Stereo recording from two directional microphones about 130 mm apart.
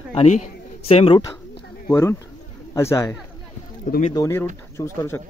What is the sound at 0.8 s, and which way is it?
Speech, 45° left (ahead or behind).